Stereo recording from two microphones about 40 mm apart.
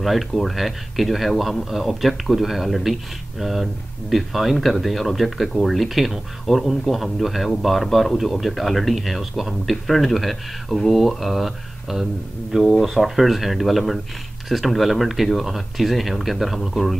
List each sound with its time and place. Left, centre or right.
0.0 s a man's voice: centre